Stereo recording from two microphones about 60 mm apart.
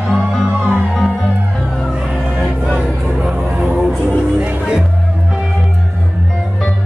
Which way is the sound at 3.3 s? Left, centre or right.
Centre.